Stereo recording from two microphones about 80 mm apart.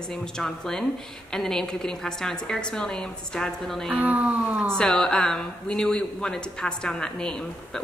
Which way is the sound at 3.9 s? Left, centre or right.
Centre.